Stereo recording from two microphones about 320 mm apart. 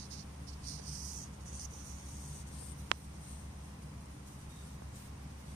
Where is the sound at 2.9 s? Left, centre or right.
Right.